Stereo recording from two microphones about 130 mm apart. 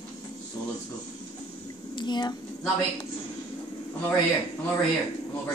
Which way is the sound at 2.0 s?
35° left (ahead or behind).